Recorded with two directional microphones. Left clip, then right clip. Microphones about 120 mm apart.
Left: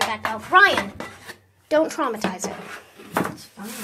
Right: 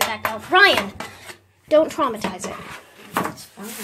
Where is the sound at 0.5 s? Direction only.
50° right (ahead or behind).